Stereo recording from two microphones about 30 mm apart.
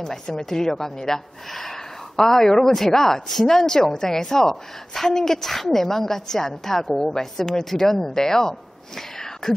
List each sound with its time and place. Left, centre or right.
0.0 s a woman's voice: centre
2.1 s a woman's voice: centre